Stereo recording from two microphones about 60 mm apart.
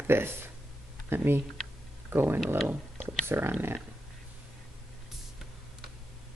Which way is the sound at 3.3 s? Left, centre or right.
Right.